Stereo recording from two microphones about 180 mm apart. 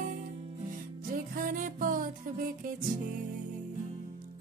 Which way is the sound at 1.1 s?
50° right (ahead or behind).